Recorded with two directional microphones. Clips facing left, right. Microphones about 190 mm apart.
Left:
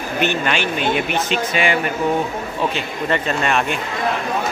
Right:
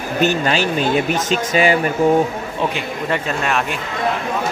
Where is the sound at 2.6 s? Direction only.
10° right (ahead or behind).